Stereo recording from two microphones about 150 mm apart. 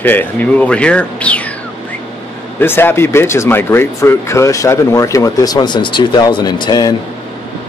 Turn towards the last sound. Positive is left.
turn(degrees=25)  # may be behind; listen again after turning